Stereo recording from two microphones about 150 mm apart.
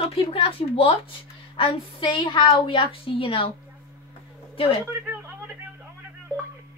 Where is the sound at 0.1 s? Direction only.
40° left (ahead or behind).